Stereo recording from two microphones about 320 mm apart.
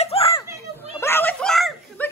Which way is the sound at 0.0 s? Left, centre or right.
Centre.